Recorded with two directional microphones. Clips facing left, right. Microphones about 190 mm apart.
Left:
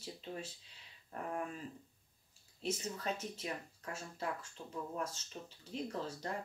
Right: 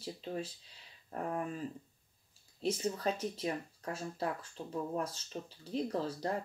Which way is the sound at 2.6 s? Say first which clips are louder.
Right 6 dB; 35° right (ahead or behind).